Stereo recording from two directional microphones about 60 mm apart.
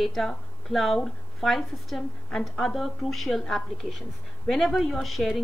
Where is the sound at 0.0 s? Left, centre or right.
Centre.